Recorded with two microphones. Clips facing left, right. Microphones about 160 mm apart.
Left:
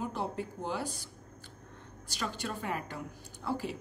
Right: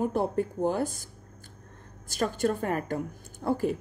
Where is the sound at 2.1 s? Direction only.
50° right (ahead or behind).